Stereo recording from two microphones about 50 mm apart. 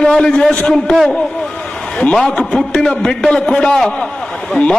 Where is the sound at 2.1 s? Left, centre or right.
Centre.